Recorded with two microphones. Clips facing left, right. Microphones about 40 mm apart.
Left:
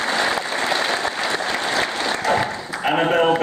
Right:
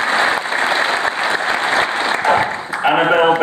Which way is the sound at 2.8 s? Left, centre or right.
Right.